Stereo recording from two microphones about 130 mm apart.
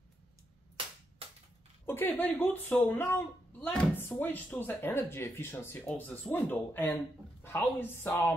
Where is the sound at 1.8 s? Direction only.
15° left (ahead or behind).